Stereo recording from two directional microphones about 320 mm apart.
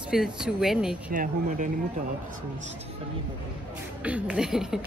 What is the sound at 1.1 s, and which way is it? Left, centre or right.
Speech, right.